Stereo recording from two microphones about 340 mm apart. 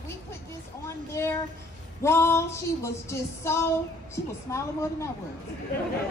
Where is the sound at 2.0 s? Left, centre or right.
Centre.